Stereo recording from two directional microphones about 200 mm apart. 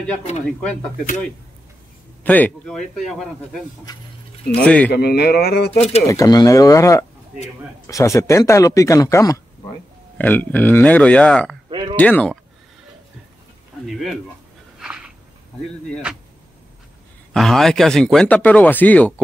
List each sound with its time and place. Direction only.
0.6 s speech: 5° left (ahead or behind)
2.2 s speech: 10° left (ahead or behind)
4.9 s speech: 55° left (ahead or behind)
5.7 s speech: 30° left (ahead or behind)
6.0 s speech: 15° left (ahead or behind)
11.7 s a sound: 25° right (ahead or behind)
12.0 s speech: 5° left (ahead or behind)
13.8 s speech: centre (ahead or behind)
14.8 s a sound: 5° right (ahead or behind)
15.9 s speech: 5° right (ahead or behind)
17.3 s speech: centre (ahead or behind)